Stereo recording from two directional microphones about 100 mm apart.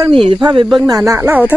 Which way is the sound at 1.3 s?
15° right (ahead or behind).